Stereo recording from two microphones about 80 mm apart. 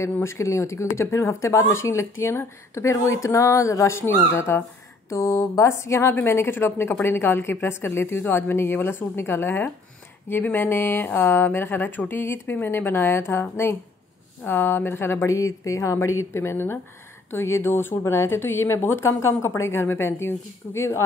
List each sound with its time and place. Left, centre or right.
0.2 s a woman's voice: left
15.2 s a woman's voice: left